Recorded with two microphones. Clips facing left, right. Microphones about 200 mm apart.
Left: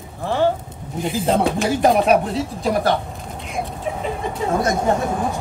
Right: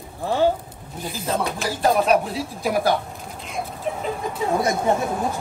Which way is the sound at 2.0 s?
Centre (ahead or behind).